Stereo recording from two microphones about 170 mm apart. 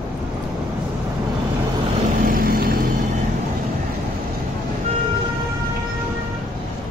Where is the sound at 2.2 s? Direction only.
60° right (ahead or behind).